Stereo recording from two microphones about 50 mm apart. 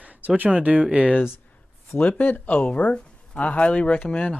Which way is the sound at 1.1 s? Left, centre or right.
Left.